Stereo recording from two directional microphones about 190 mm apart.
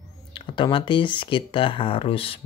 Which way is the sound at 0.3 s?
25° left (ahead or behind).